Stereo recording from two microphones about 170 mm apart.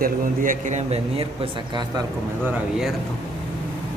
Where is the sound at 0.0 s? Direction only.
55° right (ahead or behind); by 2.0 s 25° right (ahead or behind).